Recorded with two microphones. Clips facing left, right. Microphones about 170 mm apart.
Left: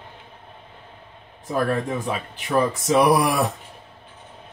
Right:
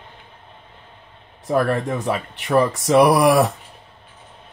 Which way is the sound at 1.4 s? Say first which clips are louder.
Right 3 dB; 65° right (ahead or behind).